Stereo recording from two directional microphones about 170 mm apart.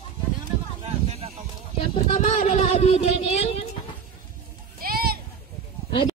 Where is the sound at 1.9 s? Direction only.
45° left (ahead or behind).